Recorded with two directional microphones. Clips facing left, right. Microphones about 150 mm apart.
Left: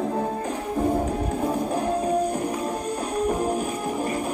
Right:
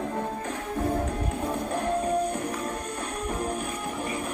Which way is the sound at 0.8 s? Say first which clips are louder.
Left 4 dB; 20° left (ahead or behind).